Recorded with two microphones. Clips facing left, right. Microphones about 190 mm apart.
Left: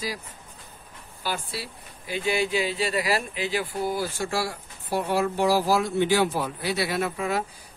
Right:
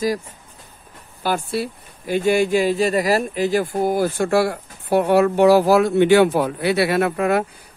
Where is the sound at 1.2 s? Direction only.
50° right (ahead or behind).